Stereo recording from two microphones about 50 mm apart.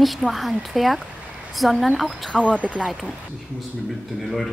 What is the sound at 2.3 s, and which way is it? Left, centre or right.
Speech, left.